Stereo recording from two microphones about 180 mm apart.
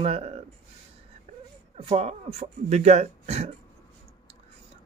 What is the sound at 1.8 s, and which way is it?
Speech, 35° right (ahead or behind).